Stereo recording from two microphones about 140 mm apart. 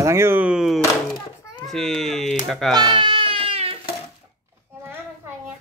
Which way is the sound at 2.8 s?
35° right (ahead or behind).